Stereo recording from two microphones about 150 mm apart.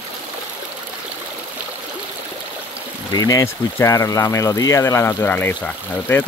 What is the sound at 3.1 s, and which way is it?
Speech, 25° left (ahead or behind).